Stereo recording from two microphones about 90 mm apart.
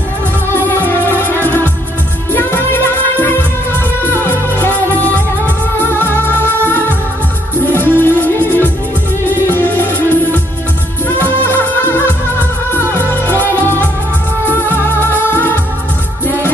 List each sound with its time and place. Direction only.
0.5 s music: 25° left (ahead or behind)
14.7 s music: 25° left (ahead or behind)